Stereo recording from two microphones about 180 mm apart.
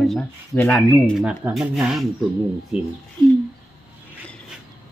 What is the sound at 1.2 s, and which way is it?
Speech, 5° right (ahead or behind).